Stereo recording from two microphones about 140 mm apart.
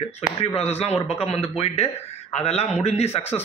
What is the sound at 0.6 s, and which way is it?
A man's voice, 45° left (ahead or behind).